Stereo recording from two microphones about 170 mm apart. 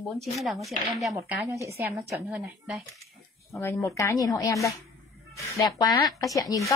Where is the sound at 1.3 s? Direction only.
15° right (ahead or behind).